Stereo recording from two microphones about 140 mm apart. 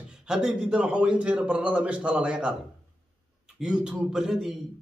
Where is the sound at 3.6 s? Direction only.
5° right (ahead or behind).